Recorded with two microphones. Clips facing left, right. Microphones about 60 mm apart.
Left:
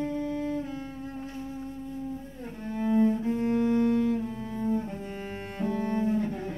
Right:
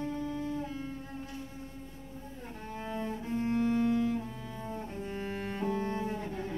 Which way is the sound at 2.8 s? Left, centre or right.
Centre.